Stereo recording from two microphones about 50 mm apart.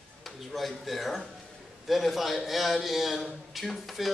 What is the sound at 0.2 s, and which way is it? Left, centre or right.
Speech, centre.